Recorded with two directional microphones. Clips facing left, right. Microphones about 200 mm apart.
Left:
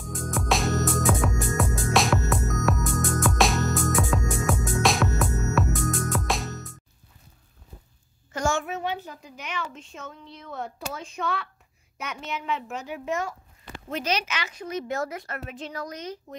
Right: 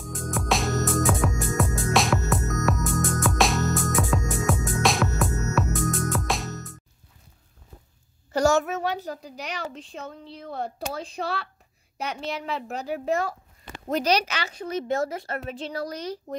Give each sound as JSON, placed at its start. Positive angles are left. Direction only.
{"t": 0.0, "sound": "music", "side_deg": 0}
{"t": 8.3, "sound": "a child's voice", "side_deg": -40}